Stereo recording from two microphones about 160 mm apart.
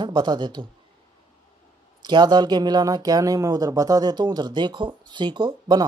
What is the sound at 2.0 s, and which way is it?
Speech, 25° right (ahead or behind).